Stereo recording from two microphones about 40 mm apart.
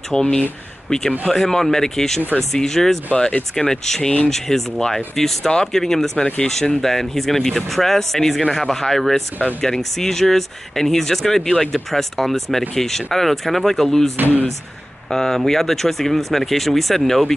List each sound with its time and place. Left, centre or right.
0.1 s speech: centre
14.1 s speech: right
15.0 s speech: centre